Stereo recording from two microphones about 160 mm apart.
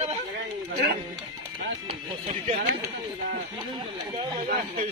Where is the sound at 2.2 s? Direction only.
55° right (ahead or behind).